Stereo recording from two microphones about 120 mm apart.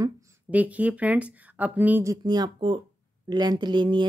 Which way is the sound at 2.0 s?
30° right (ahead or behind).